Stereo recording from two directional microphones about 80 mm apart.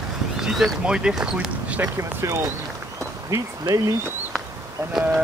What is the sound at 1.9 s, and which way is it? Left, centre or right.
Speech, right.